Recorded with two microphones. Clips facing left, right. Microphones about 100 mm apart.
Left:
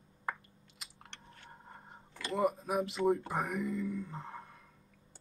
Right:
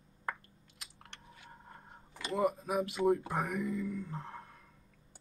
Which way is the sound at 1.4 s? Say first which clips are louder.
Left 1 dB; 5° left (ahead or behind).